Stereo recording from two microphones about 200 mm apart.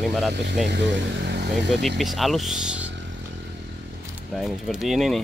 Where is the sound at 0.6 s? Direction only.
60° right (ahead or behind).